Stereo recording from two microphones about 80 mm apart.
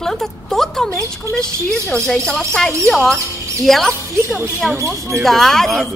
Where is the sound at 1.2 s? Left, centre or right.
Right.